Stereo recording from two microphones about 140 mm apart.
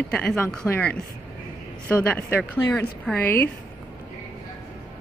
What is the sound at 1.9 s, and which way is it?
A woman's voice, 10° left (ahead or behind).